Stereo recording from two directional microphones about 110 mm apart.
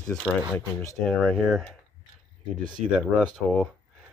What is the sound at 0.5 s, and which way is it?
Speech, 20° left (ahead or behind).